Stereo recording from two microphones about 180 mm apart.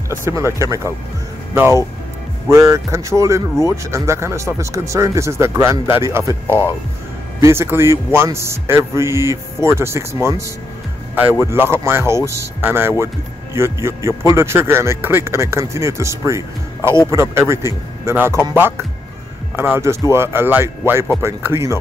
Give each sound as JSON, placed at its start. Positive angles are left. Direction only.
{"t": 0.1, "sound": "speech", "side_deg": -15}
{"t": 6.4, "sound": "speech", "side_deg": 15}
{"t": 7.3, "sound": "speech", "side_deg": -15}